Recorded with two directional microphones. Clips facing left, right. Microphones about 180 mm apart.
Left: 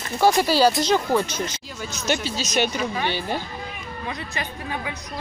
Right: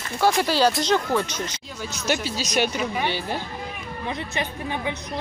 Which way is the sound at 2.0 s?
10° right (ahead or behind).